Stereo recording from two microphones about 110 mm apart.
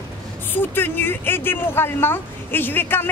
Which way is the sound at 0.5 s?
20° left (ahead or behind).